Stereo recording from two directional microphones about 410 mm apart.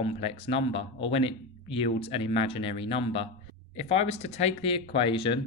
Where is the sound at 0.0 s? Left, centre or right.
Centre.